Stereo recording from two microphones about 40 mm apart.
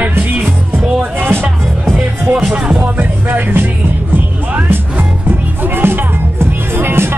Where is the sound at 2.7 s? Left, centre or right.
Right.